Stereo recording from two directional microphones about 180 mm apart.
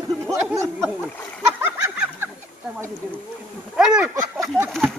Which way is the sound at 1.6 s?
10° right (ahead or behind).